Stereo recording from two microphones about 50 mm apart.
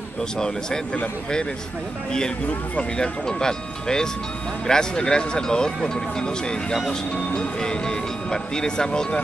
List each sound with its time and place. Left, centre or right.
2.1 s speech: centre
6.7 s speech: centre